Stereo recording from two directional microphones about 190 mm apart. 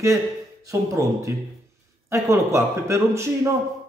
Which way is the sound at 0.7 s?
15° right (ahead or behind).